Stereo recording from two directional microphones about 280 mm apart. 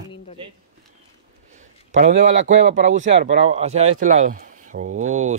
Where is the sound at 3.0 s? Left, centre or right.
Right.